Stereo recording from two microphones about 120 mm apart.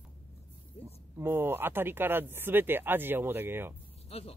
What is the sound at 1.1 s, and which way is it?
Speech, 20° right (ahead or behind).